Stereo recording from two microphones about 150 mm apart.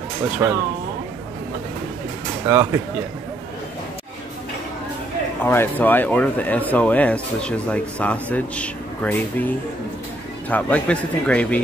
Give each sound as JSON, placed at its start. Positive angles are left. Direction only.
{"t": 0.4, "sound": "speech", "side_deg": -15}
{"t": 2.4, "sound": "speech", "side_deg": -15}
{"t": 5.4, "sound": "speech", "side_deg": 15}
{"t": 10.5, "sound": "speech", "side_deg": 10}